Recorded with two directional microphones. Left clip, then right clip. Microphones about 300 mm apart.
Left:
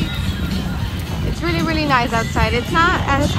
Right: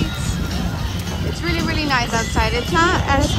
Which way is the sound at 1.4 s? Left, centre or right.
Centre.